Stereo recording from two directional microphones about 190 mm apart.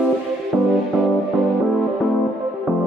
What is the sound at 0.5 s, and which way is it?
Music, 5° left (ahead or behind).